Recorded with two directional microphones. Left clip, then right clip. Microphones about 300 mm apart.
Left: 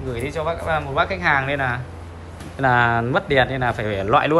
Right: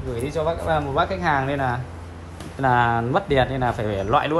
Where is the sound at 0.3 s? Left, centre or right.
Centre.